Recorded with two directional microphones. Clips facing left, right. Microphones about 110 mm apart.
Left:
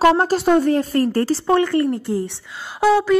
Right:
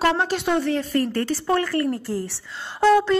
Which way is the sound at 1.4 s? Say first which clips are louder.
Left 4 dB; 20° left (ahead or behind).